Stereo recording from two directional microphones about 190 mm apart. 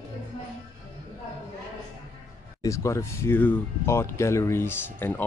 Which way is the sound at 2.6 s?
15° left (ahead or behind).